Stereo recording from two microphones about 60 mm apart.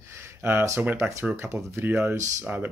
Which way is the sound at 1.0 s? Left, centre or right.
Right.